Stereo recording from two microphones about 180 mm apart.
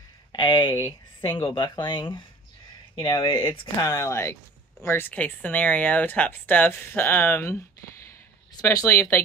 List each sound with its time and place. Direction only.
0.3 s speech: 25° left (ahead or behind)
3.8 s speech: 15° left (ahead or behind)
8.5 s speech: 20° left (ahead or behind)